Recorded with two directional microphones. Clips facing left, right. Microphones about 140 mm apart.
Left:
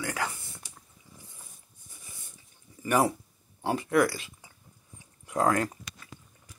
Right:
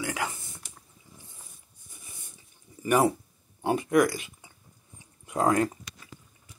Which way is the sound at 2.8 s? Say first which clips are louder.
Right 2 dB; 25° right (ahead or behind).